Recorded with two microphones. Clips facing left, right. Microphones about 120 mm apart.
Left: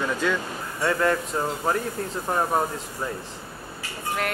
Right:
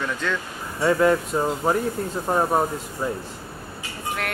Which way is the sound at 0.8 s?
10° right (ahead or behind).